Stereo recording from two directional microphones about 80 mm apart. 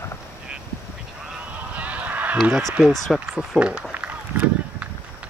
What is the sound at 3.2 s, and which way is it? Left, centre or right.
Speech, centre.